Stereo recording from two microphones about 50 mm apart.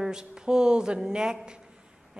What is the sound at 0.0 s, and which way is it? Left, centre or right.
A woman's voice, centre.